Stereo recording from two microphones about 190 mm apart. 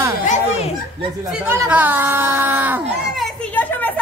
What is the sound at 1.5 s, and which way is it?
Speech, 10° right (ahead or behind).